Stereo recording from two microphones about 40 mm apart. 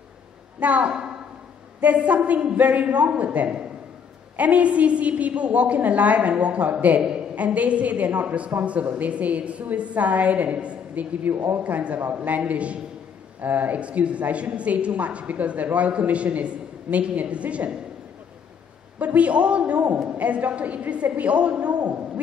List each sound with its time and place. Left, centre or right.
0.6 s a woman's voice: right
2.0 s a woman's voice: right
11.5 s a woman's voice: right
13.4 s speech: right
13.7 s a woman's voice: right
18.9 s a woman's voice: right